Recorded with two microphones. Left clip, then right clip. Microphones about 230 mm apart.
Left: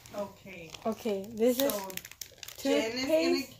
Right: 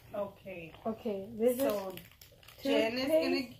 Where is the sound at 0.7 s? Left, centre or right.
Left.